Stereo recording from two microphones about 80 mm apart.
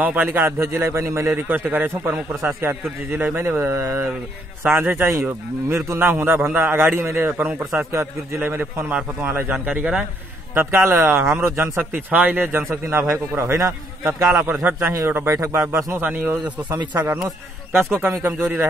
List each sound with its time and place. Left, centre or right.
0.0 s a man's voice: right
0.6 s a man's voice: right
4.6 s a man's voice: right
7.9 s a man's voice: right; by 10.0 s centre
10.5 s a man's voice: right
14.4 s a man's voice: right
15.2 s speech: right
16.0 s a man's voice: right